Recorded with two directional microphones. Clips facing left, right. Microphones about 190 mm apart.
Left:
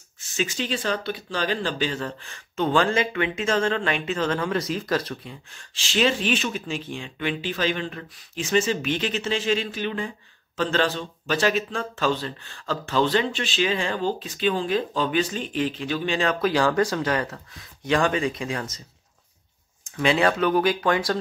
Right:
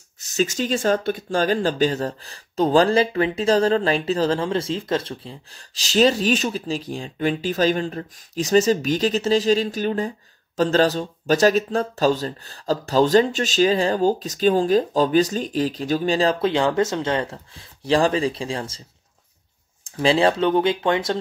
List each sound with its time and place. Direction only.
0.2 s speech: 40° right (ahead or behind)
19.8 s speech: 30° right (ahead or behind)